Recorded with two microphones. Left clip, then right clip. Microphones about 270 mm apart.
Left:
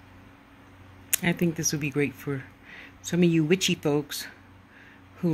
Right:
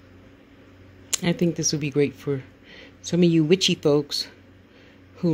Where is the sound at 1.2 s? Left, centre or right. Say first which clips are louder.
Right 3 dB; centre.